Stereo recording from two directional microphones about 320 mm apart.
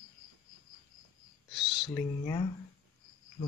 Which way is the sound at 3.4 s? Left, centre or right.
Centre.